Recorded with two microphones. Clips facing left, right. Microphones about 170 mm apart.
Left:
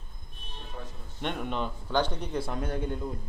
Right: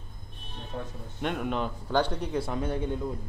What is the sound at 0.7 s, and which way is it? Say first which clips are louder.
Speech: right 6 dB; 50° right (ahead or behind).